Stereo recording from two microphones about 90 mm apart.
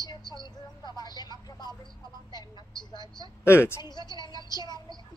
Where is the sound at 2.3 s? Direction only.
55° left (ahead or behind).